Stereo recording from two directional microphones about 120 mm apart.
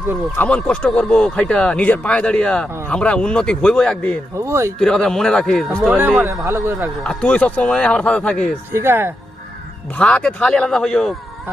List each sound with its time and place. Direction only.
0.4 s speech: 10° left (ahead or behind)
4.4 s speech: 25° right (ahead or behind)
4.7 s speech: 5° left (ahead or behind)
5.9 s speech: 20° right (ahead or behind)
7.0 s speech: 10° left (ahead or behind)
8.7 s speech: 20° right (ahead or behind)
9.9 s speech: 10° left (ahead or behind)